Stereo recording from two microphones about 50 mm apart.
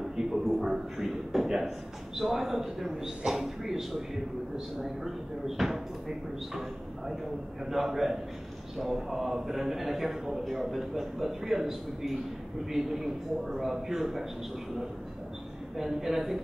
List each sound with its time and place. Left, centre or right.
0.0 s a sound: centre
4.8 s a man's voice: centre
7.7 s a man's voice: centre
15.7 s a man's voice: centre